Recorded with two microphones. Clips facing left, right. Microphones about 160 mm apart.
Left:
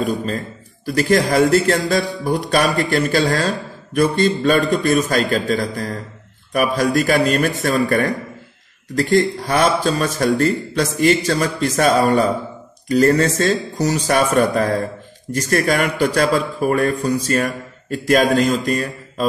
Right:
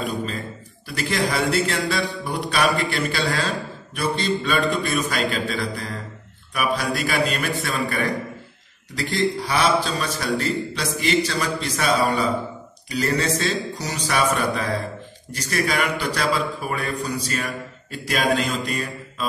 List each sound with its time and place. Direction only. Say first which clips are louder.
0.0 s a man's voice: left 6 dB; 45° left (ahead or behind)